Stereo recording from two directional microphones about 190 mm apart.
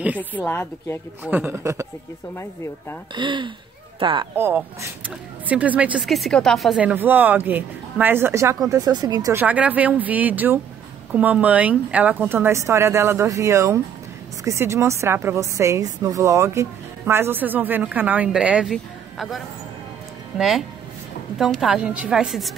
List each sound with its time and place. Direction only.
0.2 s a woman's voice: 10° left (ahead or behind)
1.2 s a woman's voice: 10° right (ahead or behind)
3.2 s speech: 25° right (ahead or behind)
4.4 s a woman's voice: 10° right (ahead or behind)